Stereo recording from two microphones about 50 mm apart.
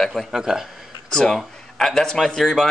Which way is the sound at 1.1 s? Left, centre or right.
Centre.